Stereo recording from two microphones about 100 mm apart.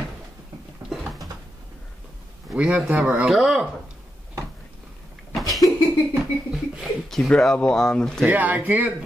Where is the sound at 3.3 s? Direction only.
5° right (ahead or behind).